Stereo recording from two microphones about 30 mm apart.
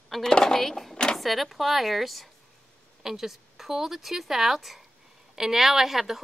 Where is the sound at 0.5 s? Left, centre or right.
Centre.